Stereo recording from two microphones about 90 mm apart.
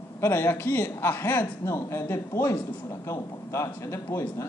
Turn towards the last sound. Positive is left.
turn(degrees=30)  # may be behind; listen again after turning